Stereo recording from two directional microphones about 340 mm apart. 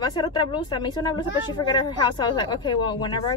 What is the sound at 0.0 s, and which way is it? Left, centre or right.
A woman's voice, centre.